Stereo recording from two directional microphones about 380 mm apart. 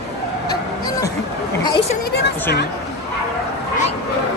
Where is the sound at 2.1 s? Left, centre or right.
Left.